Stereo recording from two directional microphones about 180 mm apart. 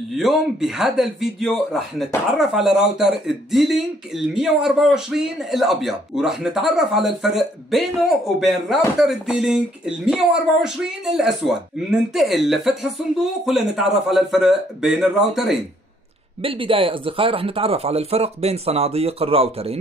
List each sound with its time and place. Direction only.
0.2 s speech: centre (ahead or behind)
16.4 s speech: 30° right (ahead or behind)